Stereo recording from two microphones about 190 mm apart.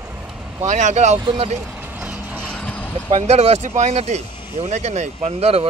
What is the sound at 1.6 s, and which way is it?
Vehicle, 10° right (ahead or behind).